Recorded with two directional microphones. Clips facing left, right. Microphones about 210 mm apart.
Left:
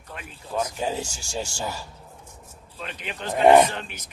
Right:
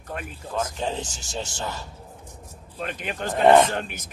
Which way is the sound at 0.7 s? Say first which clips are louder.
Left 1 dB; 10° left (ahead or behind).